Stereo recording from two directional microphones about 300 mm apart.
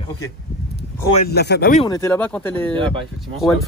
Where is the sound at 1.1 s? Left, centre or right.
Left.